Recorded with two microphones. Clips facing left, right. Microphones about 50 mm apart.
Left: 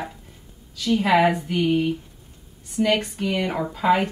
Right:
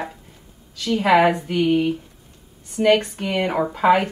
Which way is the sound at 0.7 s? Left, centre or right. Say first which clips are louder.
Right 2 dB; right.